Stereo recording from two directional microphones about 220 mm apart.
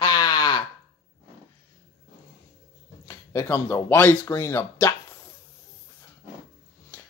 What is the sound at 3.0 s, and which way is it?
Speech, 15° left (ahead or behind).